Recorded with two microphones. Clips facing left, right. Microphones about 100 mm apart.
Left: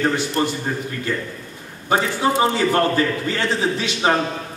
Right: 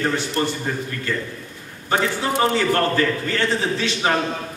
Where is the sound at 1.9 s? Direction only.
15° left (ahead or behind).